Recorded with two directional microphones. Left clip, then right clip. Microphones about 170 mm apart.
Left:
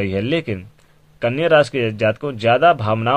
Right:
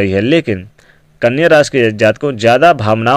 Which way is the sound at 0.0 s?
30° right (ahead or behind).